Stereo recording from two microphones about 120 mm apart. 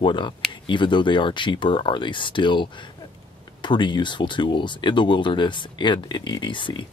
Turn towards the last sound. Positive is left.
turn(degrees=40)  # may be behind; listen again after turning